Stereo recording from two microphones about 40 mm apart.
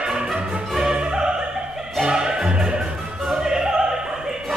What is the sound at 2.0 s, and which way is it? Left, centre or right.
Music, centre.